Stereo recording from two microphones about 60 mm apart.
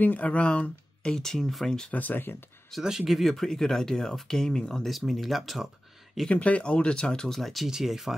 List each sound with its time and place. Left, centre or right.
0.0 s speech: left; by 1.9 s centre
1.9 s speech: left
2.7 s speech: centre
6.2 s speech: left; by 8.1 s centre